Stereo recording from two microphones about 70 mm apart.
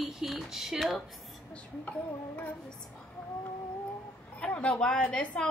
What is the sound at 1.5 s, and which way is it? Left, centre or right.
Speech, left.